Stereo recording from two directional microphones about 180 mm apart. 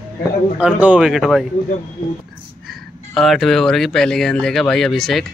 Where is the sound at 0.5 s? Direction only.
5° right (ahead or behind).